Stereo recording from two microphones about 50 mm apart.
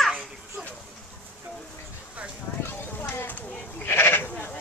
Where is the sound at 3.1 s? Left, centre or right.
Left.